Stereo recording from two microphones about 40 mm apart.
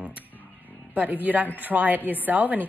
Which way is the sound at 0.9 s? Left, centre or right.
Right.